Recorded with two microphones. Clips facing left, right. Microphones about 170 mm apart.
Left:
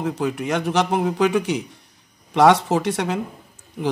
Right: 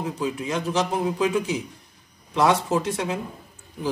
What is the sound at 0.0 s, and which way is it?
A man's voice, 65° left (ahead or behind).